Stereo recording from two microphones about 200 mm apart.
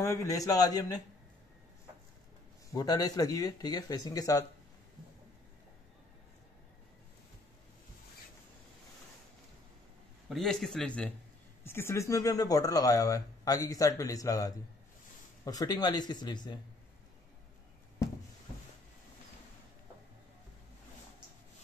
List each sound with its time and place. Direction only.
0.0 s speech: 15° left (ahead or behind)
2.7 s speech: 20° left (ahead or behind)
10.3 s speech: centre (ahead or behind); by 16.5 s 20° left (ahead or behind)